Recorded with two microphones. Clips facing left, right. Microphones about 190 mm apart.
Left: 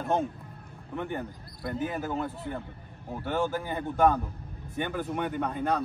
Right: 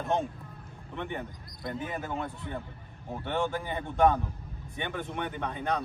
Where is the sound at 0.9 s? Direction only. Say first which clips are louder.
Left 3 dB; 5° left (ahead or behind).